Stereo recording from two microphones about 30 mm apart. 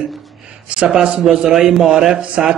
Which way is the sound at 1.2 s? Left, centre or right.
Right.